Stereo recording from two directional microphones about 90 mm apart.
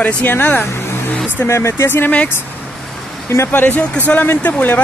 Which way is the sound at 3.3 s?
25° left (ahead or behind).